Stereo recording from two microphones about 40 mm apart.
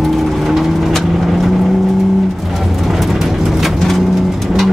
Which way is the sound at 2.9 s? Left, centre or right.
Centre.